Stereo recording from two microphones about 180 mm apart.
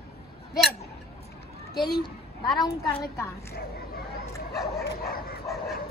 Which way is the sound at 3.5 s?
60° left (ahead or behind).